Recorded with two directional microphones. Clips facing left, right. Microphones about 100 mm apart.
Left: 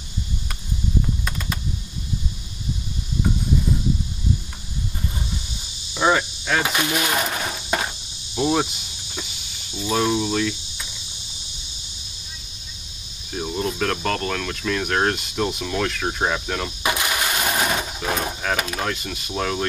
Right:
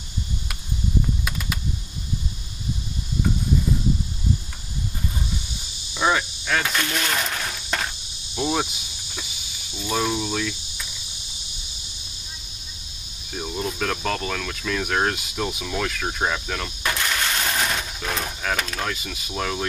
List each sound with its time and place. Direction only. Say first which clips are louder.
5.9 s a sound: left 2 dB; 5° left (ahead or behind)
8.4 s cricket: left 3 dB; centre (ahead or behind)
13.3 s speech: left 3 dB; 5° left (ahead or behind)